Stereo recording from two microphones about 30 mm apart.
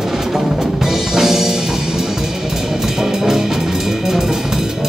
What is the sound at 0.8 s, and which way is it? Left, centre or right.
Music, centre.